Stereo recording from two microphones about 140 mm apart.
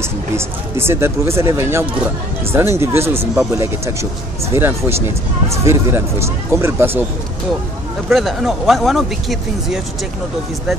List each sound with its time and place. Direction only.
0.7 s speech: 15° right (ahead or behind)
8.1 s speech: centre (ahead or behind)